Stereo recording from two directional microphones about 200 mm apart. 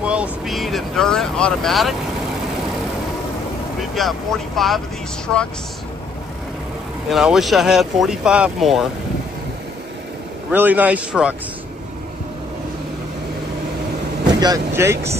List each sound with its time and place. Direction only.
0.0 s speech: 5° right (ahead or behind)
3.9 s speech: centre (ahead or behind)
7.1 s speech: centre (ahead or behind)
10.5 s a man's voice: 10° right (ahead or behind)
14.4 s a man's voice: 15° right (ahead or behind)